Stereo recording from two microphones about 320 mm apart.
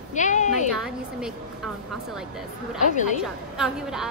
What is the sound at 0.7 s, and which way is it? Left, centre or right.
Speech, centre.